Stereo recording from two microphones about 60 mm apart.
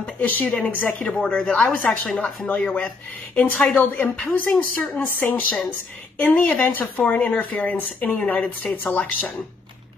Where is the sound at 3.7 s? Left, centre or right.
Left.